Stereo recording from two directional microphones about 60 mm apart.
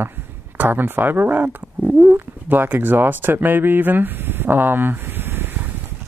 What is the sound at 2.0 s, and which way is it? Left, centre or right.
Speech, right.